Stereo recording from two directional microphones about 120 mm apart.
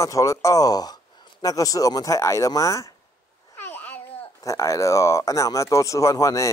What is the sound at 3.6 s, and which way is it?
Babbling, 15° left (ahead or behind).